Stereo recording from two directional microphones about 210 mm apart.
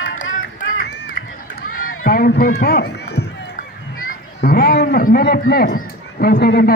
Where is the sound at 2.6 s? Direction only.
50° left (ahead or behind).